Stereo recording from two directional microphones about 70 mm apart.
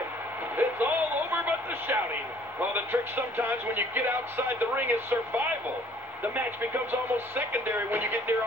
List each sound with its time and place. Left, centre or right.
0.6 s music: right
2.7 s speech: right